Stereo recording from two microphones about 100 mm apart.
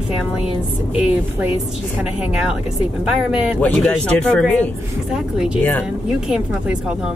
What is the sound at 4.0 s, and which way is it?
Speech, 15° left (ahead or behind).